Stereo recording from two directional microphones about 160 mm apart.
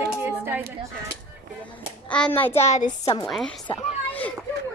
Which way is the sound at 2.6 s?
45° left (ahead or behind).